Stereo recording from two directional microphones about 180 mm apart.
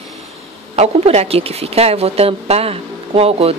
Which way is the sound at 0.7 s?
35° right (ahead or behind).